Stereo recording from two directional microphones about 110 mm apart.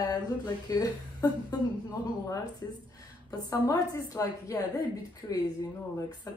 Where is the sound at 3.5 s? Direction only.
30° left (ahead or behind).